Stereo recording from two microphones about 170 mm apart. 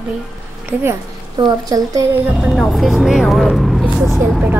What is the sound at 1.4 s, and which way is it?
Speech, 20° right (ahead or behind).